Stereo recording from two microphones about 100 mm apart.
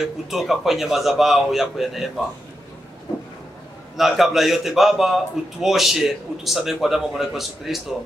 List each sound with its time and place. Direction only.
0.0 s a man's voice: 5° right (ahead or behind)
3.9 s a man's voice: centre (ahead or behind)